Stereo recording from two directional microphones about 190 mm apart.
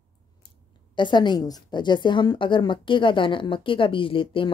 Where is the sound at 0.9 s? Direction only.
25° left (ahead or behind).